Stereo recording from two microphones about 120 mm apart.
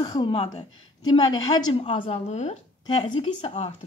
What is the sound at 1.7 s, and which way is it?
Speech, 50° left (ahead or behind).